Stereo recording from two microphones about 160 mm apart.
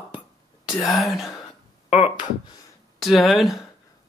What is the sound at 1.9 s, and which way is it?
Speech, 40° left (ahead or behind).